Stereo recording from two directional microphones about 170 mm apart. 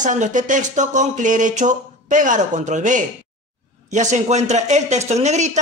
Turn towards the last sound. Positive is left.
turn(degrees=-40)  # may be behind; listen again after turning